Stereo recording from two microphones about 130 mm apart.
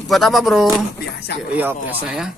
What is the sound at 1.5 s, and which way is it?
Speech, 10° right (ahead or behind).